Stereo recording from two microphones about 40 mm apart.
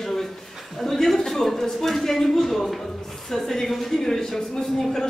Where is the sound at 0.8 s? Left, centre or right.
Centre.